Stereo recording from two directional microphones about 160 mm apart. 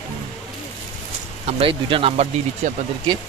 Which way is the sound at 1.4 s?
35° right (ahead or behind).